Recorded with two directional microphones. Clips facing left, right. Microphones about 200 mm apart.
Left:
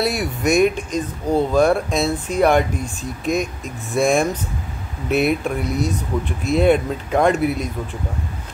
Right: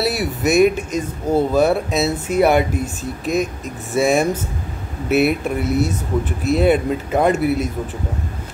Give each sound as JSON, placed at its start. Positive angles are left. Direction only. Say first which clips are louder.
{"t": 0.0, "sound": "speech", "louder": "right 1 dB", "side_deg": -5}